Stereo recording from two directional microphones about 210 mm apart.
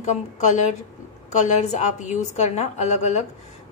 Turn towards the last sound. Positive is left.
turn(degrees=35)  # may be behind; listen again after turning